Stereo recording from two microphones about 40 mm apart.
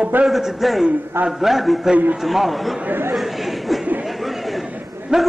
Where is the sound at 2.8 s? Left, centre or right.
Right.